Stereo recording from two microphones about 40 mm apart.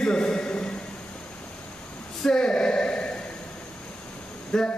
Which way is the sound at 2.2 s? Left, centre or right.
Centre.